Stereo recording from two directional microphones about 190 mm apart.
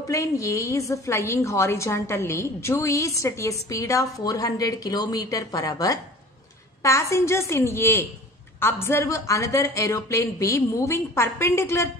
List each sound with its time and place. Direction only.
0.0 s a woman's voice: 15° left (ahead or behind)